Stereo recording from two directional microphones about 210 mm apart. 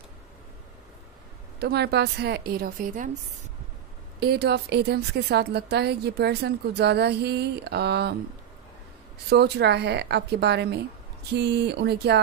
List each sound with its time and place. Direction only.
1.6 s a woman's voice: 50° right (ahead or behind)
4.2 s a woman's voice: 50° right (ahead or behind)
9.3 s a woman's voice: 55° right (ahead or behind)